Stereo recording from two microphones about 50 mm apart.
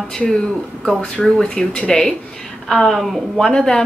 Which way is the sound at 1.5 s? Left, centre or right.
Centre.